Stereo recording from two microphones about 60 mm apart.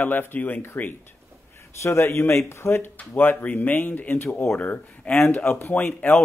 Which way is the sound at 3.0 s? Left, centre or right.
Left.